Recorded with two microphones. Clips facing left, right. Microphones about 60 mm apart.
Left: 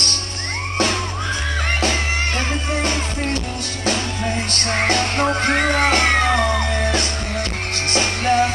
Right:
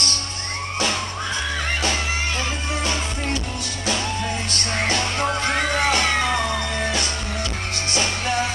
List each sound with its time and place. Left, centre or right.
4.5 s music: left